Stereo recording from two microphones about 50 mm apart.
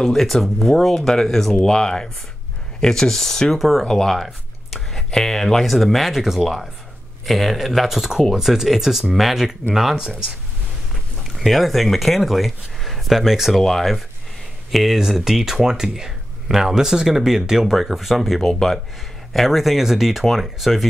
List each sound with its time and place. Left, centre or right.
0.0 s speech: centre
11.2 s speech: centre
13.6 s speech: centre